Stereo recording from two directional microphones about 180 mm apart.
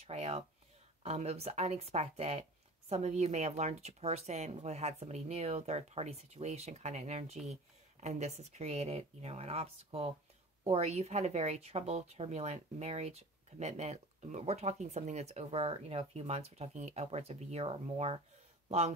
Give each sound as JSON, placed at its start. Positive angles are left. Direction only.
{"t": 0.0, "sound": "a woman's voice", "side_deg": -35}